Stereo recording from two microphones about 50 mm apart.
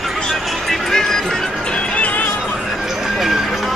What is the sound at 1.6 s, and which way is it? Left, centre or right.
Music, left.